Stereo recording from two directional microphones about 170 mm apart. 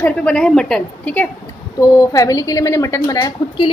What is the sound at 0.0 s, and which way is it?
A woman's voice, 5° left (ahead or behind).